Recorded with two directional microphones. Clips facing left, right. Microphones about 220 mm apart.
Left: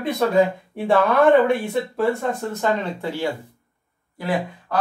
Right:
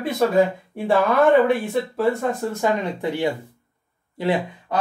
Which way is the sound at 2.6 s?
15° right (ahead or behind).